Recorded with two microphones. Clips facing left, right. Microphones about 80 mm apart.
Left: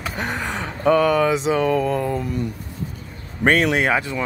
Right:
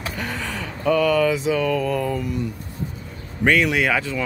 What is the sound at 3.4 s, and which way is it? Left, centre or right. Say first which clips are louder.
Speech: left 1 dB; left.